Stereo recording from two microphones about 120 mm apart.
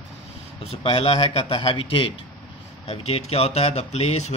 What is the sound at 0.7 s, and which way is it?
Speech, 55° left (ahead or behind).